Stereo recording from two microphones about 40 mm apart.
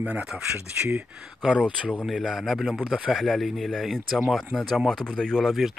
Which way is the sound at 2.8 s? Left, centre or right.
Right.